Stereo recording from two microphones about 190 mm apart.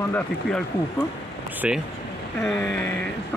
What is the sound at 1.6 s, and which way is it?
Speech, 5° right (ahead or behind).